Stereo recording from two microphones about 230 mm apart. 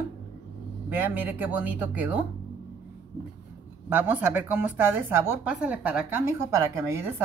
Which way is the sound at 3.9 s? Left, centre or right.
Centre.